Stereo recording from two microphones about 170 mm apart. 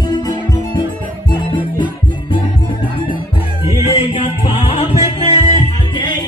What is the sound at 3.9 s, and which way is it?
Music, 30° left (ahead or behind).